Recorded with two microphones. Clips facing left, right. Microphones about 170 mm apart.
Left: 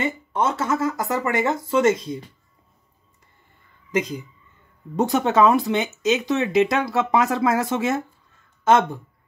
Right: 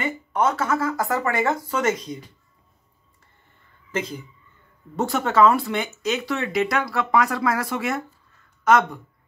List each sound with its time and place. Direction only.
0.0 s speech: 25° left (ahead or behind)
3.9 s speech: 15° left (ahead or behind)